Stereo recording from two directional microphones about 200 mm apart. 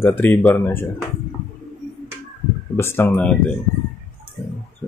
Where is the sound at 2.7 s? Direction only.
10° left (ahead or behind).